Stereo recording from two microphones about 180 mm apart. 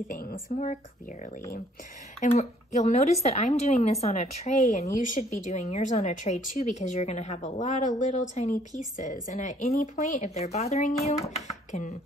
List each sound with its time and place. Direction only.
0.1 s speech: 50° left (ahead or behind)
2.1 s speech: 40° left (ahead or behind)